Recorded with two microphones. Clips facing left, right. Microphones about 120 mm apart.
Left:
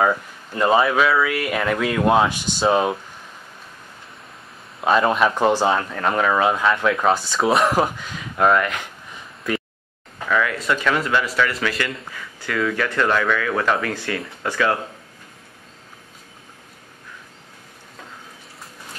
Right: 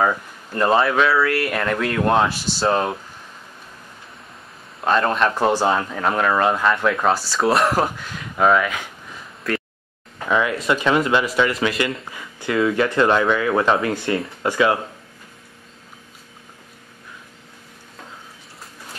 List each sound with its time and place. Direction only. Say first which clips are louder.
0.0 s speech: left 1 dB; centre (ahead or behind)
4.8 s a man's voice: left 1 dB; 5° left (ahead or behind)
5.3 s speech: even; 10° right (ahead or behind)
10.2 s speech: right 1 dB; 20° right (ahead or behind)